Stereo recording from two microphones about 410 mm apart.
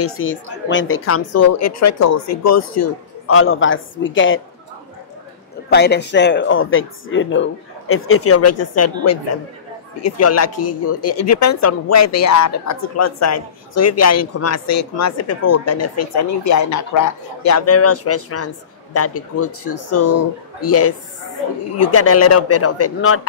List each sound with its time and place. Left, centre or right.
0.0 s speech: left
5.7 s speech: left